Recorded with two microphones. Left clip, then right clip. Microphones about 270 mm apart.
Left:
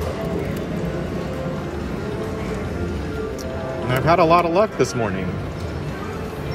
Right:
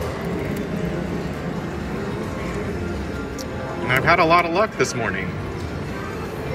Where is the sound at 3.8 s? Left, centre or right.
Centre.